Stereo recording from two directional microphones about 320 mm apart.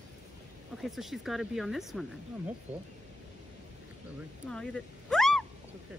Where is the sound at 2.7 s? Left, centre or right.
Right.